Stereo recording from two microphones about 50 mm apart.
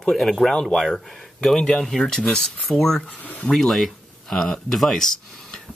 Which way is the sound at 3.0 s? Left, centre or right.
Left.